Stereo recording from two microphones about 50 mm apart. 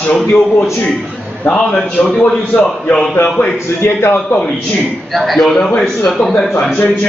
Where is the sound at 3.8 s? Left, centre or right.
Left.